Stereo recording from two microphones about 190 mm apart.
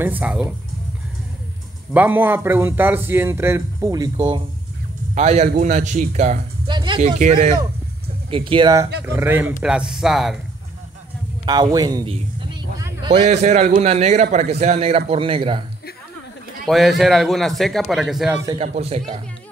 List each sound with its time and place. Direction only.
0.0 s speech: 10° right (ahead or behind)
2.0 s speech: 10° right (ahead or behind)
5.1 s a man's voice: 35° right (ahead or behind)
6.7 s music: 25° right (ahead or behind)
7.0 s a man's voice: 40° right (ahead or behind)
8.3 s speech: 25° right (ahead or behind)
9.0 s speech: 10° right (ahead or behind)
11.4 s speech: 20° right (ahead or behind)
12.7 s vehicle: 20° right (ahead or behind)
13.1 s a man's voice: 35° right (ahead or behind)
16.6 s speech: centre (ahead or behind)
18.6 s a man's voice: 35° right (ahead or behind)